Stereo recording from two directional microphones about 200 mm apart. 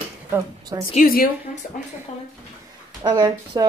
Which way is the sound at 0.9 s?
45° left (ahead or behind).